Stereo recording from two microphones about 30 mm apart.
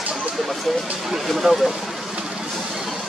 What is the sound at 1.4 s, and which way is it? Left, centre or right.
Speech, right.